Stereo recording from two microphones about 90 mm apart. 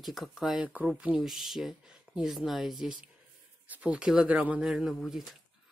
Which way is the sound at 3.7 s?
15° right (ahead or behind).